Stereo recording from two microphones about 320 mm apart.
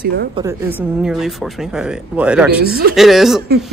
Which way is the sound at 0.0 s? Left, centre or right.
Right.